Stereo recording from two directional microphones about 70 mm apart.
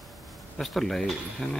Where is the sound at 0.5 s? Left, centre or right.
Centre.